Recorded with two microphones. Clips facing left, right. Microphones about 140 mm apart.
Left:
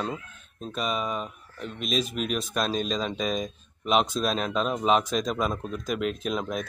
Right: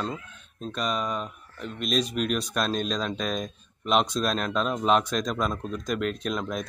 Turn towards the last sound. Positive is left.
turn(degrees=5)  # may be behind; listen again after turning